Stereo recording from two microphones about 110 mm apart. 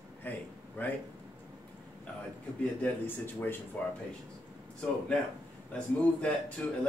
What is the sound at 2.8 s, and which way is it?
Speech, 15° left (ahead or behind).